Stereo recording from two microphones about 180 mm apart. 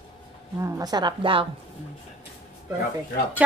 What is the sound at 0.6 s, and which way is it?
Speech, 20° right (ahead or behind).